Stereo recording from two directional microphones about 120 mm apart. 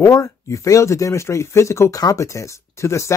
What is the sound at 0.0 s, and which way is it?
Speech, 25° left (ahead or behind).